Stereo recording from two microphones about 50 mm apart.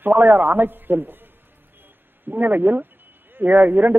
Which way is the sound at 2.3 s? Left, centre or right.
Right.